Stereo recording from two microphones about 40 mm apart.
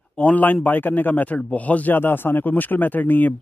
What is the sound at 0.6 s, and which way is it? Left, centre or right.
Speech, left.